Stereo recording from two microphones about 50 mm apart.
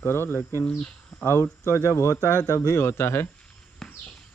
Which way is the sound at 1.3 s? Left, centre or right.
Left.